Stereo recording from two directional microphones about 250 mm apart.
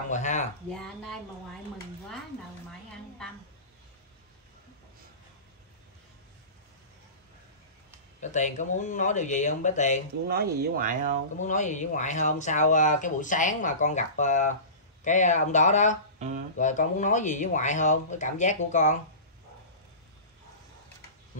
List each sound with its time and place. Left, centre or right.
0.1 s a sound: left
0.7 s a woman's voice: centre
8.2 s speech: left
10.2 s speech: right
11.3 s speech: left
16.2 s speech: right
16.5 s speech: left